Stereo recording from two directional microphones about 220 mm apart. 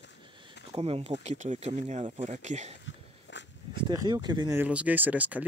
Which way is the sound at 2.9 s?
55° left (ahead or behind).